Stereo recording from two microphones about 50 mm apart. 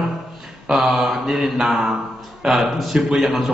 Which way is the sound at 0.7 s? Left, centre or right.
Centre.